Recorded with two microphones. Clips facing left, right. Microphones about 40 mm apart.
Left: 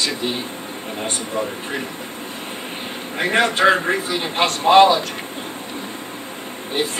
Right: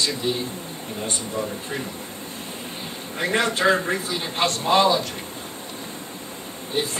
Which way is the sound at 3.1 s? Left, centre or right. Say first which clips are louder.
Left 4 dB; left.